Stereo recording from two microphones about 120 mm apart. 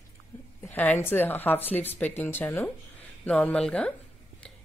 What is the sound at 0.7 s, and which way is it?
Speech, 15° left (ahead or behind).